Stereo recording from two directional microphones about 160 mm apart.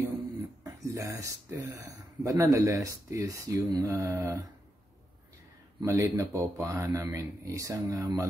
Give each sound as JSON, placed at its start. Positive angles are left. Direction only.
{"t": 0.8, "sound": "speech", "side_deg": -20}
{"t": 5.8, "sound": "speech", "side_deg": -20}